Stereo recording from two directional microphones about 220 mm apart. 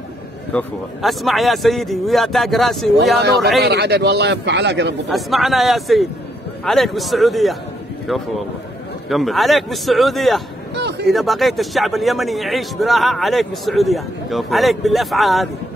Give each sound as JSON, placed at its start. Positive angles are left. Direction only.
{"t": 0.5, "sound": "a man's voice", "side_deg": 5}
{"t": 3.6, "sound": "a man's voice", "side_deg": -50}
{"t": 5.1, "sound": "a man's voice", "side_deg": 0}
{"t": 10.7, "sound": "a sound", "side_deg": -50}
{"t": 11.1, "sound": "a man's voice", "side_deg": 0}